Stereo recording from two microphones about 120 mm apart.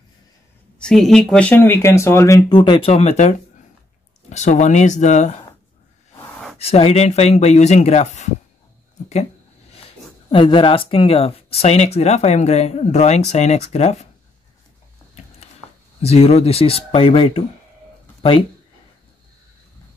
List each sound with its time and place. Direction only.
0.7 s speech: 5° left (ahead or behind); by 2.6 s 25° left (ahead or behind)
2.6 s speech: 40° left (ahead or behind)
2.9 s speech: 60° left (ahead or behind); by 5.3 s 80° left
6.6 s speech: 55° left (ahead or behind); by 8.3 s 75° left (ahead or behind)
10.3 s speech: 45° left (ahead or behind); by 14.0 s 65° left (ahead or behind)
16.0 s speech: 60° left (ahead or behind)